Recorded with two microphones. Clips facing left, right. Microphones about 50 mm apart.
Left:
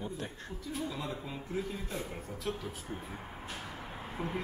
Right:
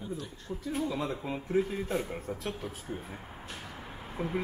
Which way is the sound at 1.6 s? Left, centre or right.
Right.